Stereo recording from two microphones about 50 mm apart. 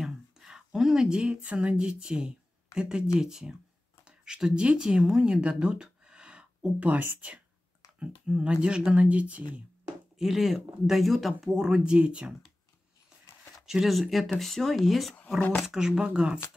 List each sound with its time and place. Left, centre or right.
0.0 s a sound: centre
0.7 s speech: centre
6.9 s speech: right
8.0 s speech: centre
10.1 s speech: centre
11.5 s speech: centre
13.7 s speech: centre
15.1 s speech: left
15.6 s speech: centre